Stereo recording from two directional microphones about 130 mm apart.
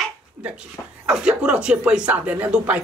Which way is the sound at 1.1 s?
10° right (ahead or behind).